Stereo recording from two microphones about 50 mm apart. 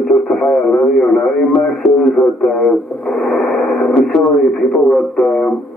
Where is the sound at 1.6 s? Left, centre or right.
Centre.